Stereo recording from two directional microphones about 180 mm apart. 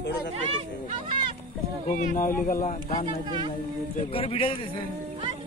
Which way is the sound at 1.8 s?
45° left (ahead or behind).